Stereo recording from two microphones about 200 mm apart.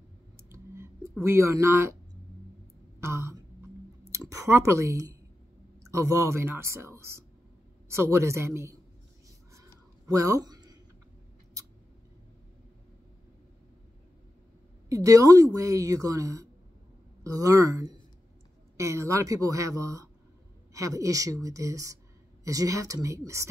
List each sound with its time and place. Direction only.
0.4 s clicking: 15° right (ahead or behind)
1.2 s a woman's voice: 15° right (ahead or behind)
3.0 s throat clearing: 15° right (ahead or behind)
4.1 s a woman's voice: 15° right (ahead or behind)
9.5 s a sound: 15° right (ahead or behind)
14.9 s a woman's voice: 15° right (ahead or behind)